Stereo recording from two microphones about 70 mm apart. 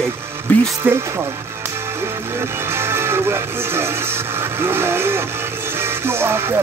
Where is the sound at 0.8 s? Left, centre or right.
Right.